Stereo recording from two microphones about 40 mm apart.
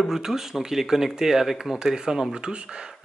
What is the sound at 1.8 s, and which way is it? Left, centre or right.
Speech, centre.